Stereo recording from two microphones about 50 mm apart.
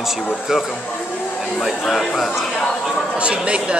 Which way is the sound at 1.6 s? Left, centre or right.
Centre.